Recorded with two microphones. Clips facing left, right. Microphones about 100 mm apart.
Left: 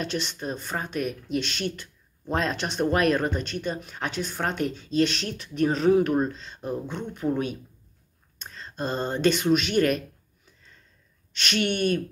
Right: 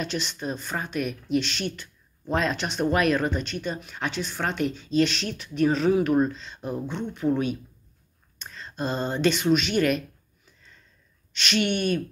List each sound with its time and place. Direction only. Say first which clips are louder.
0.0 s speech: even; 45° left (ahead or behind)
8.4 s speech: right 1 dB; 40° left (ahead or behind)
11.3 s speech: right 1 dB; 50° left (ahead or behind)